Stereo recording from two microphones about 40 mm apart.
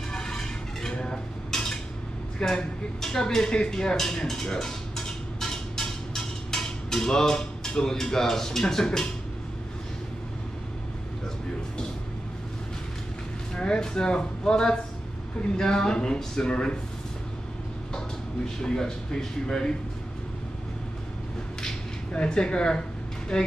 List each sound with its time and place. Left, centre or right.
0.1 s vehicle: centre
0.9 s a sound: centre
2.4 s speech: centre
3.7 s a sound: centre
13.6 s speech: left
18.6 s speech: centre
22.1 s speech: left